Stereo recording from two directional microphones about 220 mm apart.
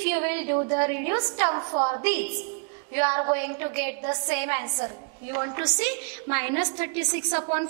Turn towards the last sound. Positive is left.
turn(degrees=-15)  # may be behind; listen again after turning